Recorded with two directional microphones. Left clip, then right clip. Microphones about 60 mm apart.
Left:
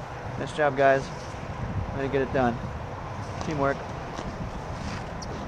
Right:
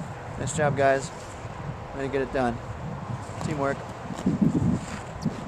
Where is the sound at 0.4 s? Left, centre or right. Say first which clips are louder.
Left 1 dB; centre.